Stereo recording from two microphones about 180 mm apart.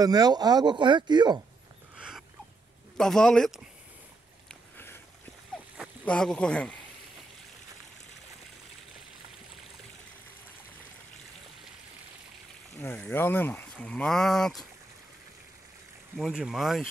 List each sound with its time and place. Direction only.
0.0 s speech: 20° right (ahead or behind)
2.0 s a sound: 5° right (ahead or behind)
3.0 s speech: 5° left (ahead or behind)
4.7 s a sound: 10° left (ahead or behind)
6.0 s speech: 5° left (ahead or behind)
12.7 s speech: 10° left (ahead or behind)
16.2 s speech: centre (ahead or behind)